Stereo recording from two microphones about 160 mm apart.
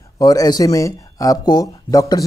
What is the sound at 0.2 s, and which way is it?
Speech, 25° left (ahead or behind).